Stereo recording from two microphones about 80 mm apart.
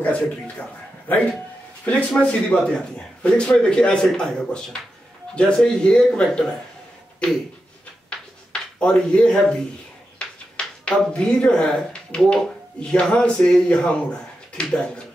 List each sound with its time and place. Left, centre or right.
0.0 s a man's voice: left
8.1 s a sound: centre
10.1 s speech: centre